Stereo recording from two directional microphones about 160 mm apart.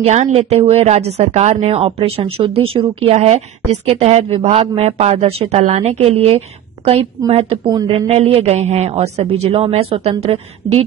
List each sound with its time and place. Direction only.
0.0 s speech: 45° right (ahead or behind)